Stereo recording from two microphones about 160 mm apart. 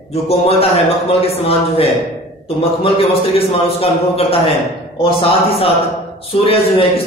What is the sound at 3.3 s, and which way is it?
Speech, 35° left (ahead or behind).